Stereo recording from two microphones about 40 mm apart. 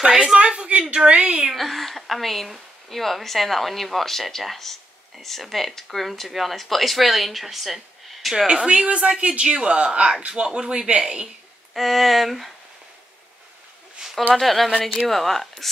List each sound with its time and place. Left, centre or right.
0.1 s a woman's voice: centre
0.4 s a woman's voice: right
1.5 s speech: centre
8.5 s a woman's voice: right
11.7 s speech: centre
14.0 s a sound: right
14.3 s speech: centre